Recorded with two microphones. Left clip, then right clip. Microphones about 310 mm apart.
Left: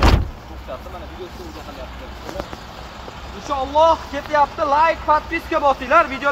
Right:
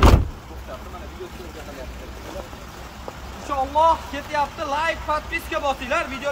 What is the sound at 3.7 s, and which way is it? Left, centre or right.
Speech, left.